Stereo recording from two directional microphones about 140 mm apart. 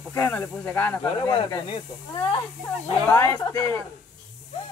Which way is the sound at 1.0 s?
35° left (ahead or behind).